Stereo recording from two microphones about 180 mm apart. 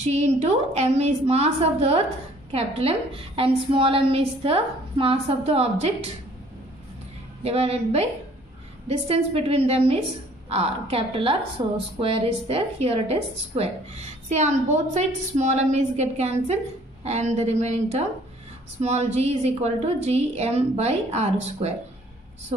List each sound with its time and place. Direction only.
0.0 s a woman's voice: 40° right (ahead or behind)
7.4 s a woman's voice: 35° right (ahead or behind)